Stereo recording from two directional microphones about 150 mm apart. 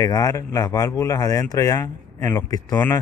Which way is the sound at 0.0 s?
25° left (ahead or behind).